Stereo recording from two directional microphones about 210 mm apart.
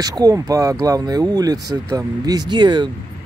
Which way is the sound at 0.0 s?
15° right (ahead or behind).